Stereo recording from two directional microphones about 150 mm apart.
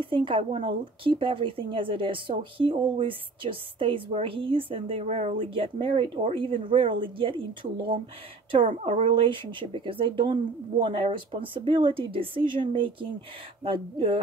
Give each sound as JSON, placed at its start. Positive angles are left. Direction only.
{"t": 0.0, "sound": "a woman's voice", "side_deg": -35}
{"t": 8.6, "sound": "a woman's voice", "side_deg": -45}